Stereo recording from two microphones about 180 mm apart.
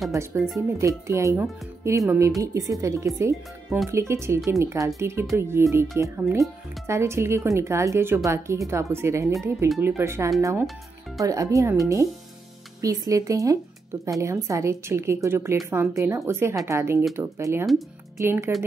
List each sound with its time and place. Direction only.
0.1 s speech: 15° right (ahead or behind)
12.8 s speech: 20° right (ahead or behind)